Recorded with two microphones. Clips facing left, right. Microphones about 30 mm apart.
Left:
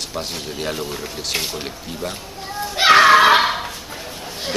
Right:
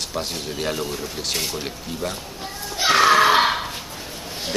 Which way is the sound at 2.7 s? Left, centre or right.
Left.